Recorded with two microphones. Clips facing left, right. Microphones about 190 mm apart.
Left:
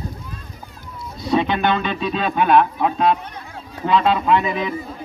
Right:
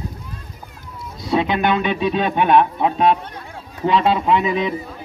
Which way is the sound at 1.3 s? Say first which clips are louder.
Even; 5° right (ahead or behind).